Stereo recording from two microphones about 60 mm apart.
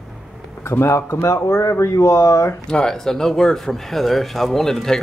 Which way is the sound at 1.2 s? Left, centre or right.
Left.